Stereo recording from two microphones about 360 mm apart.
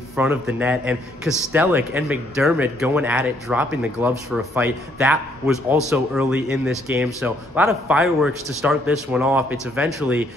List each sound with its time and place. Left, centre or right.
0.1 s a man's voice: centre